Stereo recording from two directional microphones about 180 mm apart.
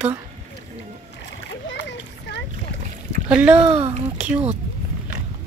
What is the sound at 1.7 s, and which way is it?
Children playing, 75° left (ahead or behind).